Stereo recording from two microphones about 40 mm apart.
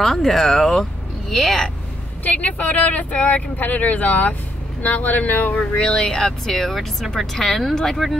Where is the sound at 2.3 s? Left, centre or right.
Left.